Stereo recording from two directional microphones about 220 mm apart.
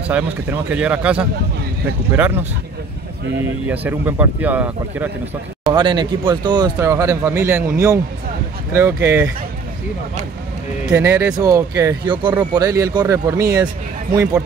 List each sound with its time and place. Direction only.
0.1 s speech: 5° right (ahead or behind)
3.6 s speech: 10° right (ahead or behind)
5.7 s speech: 20° right (ahead or behind)
8.7 s speech: 15° right (ahead or behind)
11.0 s speech: 10° right (ahead or behind)